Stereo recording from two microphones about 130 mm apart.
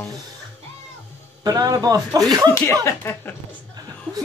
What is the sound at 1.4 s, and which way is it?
Speech, 30° right (ahead or behind).